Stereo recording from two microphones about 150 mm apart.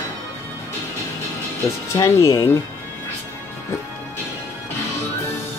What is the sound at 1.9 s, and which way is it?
Speech, 20° left (ahead or behind).